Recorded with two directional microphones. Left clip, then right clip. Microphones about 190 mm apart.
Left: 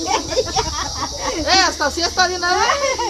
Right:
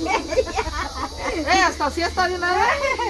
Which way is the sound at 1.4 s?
15° right (ahead or behind).